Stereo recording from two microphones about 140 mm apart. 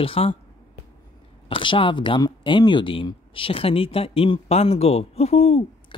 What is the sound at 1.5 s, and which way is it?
Speech, 35° left (ahead or behind).